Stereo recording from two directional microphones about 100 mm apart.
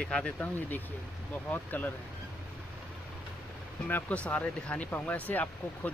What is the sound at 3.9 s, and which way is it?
Speech, 15° left (ahead or behind).